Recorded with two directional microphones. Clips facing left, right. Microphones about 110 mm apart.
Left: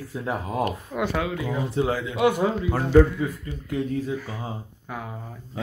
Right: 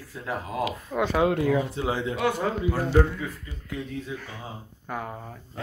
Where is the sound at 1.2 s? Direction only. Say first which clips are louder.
Right 6 dB; 55° right (ahead or behind).